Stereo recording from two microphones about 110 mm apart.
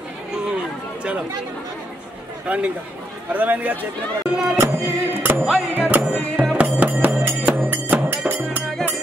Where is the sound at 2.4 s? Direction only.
10° right (ahead or behind).